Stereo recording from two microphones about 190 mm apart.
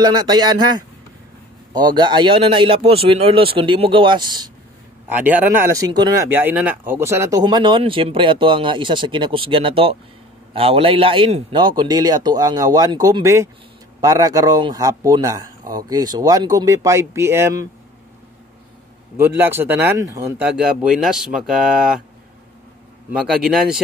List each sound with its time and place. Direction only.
0.0 s speech: 20° right (ahead or behind)
5.1 s speech: 10° right (ahead or behind)
6.3 s speech: 10° right (ahead or behind)
19.1 s speech: 10° right (ahead or behind)
23.4 s speech: 5° right (ahead or behind)